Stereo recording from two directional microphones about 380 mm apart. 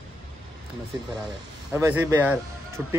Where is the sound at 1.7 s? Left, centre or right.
Centre.